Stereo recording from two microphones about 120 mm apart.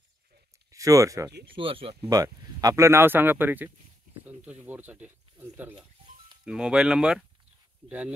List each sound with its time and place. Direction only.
0.7 s speech: 25° right (ahead or behind)
1.5 s speech: 50° right (ahead or behind)
2.0 s speech: 30° right (ahead or behind); by 7.2 s 5° right (ahead or behind)